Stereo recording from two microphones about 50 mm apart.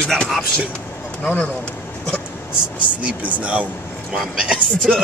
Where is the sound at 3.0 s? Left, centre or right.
Right.